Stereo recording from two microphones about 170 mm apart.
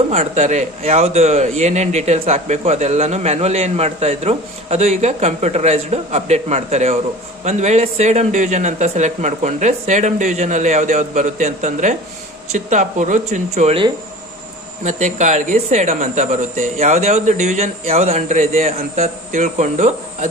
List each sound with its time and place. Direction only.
0.1 s a man's voice: 40° right (ahead or behind)